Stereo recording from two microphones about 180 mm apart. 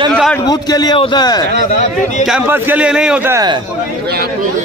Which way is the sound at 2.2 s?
10° right (ahead or behind).